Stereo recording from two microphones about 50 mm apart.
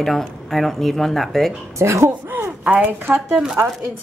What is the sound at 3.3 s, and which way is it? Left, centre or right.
Speech, centre.